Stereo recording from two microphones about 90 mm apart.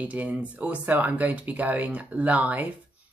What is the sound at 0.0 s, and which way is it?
Speech, 15° right (ahead or behind).